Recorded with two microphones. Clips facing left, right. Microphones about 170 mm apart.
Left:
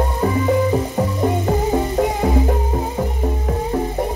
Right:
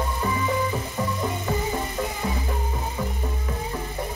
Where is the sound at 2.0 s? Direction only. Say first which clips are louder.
Left 11 dB; 60° left (ahead or behind).